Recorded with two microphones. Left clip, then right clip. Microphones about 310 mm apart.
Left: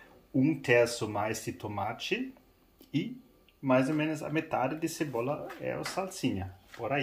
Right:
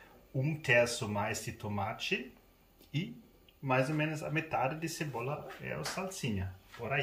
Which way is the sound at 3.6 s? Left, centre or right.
Centre.